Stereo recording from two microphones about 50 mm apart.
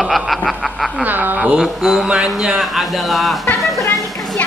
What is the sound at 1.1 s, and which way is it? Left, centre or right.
Speech, right.